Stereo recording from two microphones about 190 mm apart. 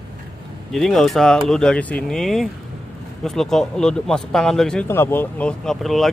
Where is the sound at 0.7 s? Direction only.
Centre (ahead or behind).